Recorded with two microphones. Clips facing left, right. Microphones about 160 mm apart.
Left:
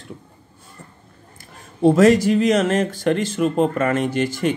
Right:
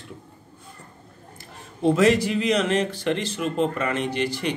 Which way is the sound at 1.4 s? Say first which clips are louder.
Left 7 dB; 40° left (ahead or behind).